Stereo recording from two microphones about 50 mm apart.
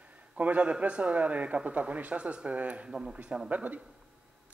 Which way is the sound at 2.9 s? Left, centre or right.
Centre.